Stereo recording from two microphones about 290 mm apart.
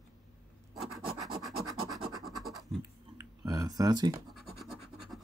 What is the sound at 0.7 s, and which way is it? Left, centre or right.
Scratch, centre.